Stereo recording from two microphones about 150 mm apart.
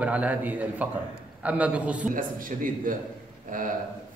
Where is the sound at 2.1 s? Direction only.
65° right (ahead or behind).